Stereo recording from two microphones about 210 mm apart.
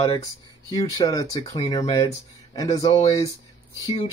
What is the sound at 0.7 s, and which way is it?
Speech, 15° left (ahead or behind).